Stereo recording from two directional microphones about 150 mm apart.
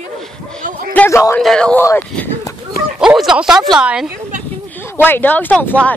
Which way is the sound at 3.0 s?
5° right (ahead or behind).